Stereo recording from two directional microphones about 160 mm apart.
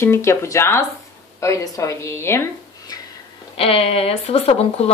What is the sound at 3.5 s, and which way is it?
Speech, 35° left (ahead or behind).